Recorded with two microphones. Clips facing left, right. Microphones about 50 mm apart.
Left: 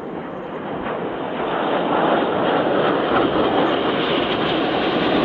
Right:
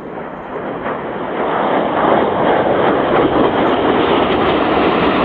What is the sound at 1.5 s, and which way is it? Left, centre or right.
Vehicle, right.